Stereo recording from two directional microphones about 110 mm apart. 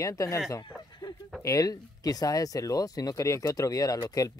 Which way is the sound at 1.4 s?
30° left (ahead or behind).